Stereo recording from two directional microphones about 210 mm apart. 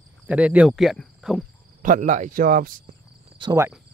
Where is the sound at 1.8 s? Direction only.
40° right (ahead or behind).